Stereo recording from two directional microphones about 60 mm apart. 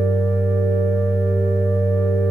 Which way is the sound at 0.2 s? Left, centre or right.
Left.